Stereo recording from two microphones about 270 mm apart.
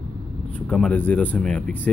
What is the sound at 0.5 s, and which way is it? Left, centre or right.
Speech, centre.